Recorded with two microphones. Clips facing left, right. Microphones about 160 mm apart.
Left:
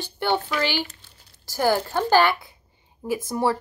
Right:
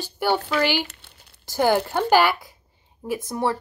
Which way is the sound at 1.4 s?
20° right (ahead or behind).